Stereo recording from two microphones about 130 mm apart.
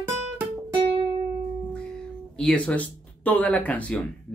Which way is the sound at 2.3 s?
10° left (ahead or behind).